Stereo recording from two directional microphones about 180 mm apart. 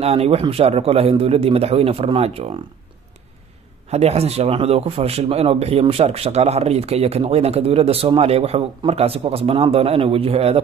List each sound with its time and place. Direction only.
0.0 s speech: 35° right (ahead or behind)
3.9 s speech: 35° right (ahead or behind)